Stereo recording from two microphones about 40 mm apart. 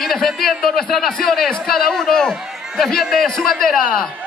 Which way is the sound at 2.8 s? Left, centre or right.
Centre.